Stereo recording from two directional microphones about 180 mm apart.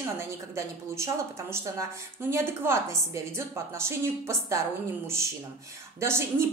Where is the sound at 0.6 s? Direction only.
15° right (ahead or behind).